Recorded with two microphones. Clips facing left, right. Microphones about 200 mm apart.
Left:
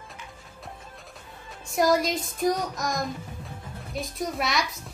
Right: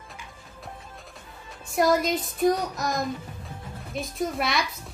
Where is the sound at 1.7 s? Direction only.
Centre (ahead or behind).